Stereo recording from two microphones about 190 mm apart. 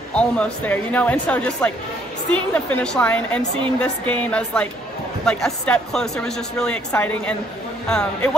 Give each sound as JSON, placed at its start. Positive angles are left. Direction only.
{"t": 0.1, "sound": "speech", "side_deg": 5}